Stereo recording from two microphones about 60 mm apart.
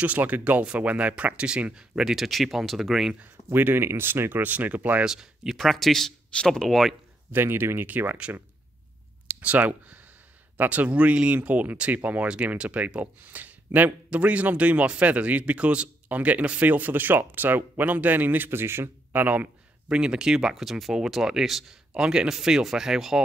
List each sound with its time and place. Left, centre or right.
0.0 s a man's voice: right; by 3.2 s centre
3.5 s speech: right
5.0 s speech: centre
5.6 s speech: centre
7.3 s speech: right
9.3 s a sound: right
10.6 s a man's voice: right
19.9 s speech: centre